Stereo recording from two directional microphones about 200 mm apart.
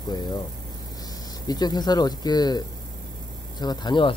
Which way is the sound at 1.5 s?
20° left (ahead or behind).